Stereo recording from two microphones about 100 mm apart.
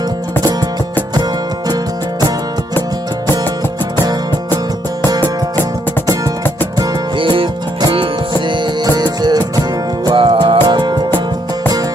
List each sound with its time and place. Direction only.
0.4 s music: 45° right (ahead or behind)
1.7 s music: 40° right (ahead or behind)
7.2 s music: 60° right (ahead or behind)
8.8 s music: 45° right (ahead or behind)
10.0 s music: 60° right (ahead or behind)
10.6 s music: 45° right (ahead or behind)